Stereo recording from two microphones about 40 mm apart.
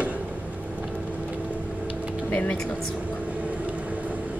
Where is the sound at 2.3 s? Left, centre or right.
Left.